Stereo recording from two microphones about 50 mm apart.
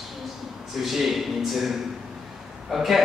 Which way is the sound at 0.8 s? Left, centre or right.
Centre.